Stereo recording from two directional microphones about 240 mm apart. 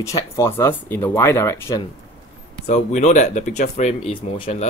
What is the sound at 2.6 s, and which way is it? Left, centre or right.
Speech, left.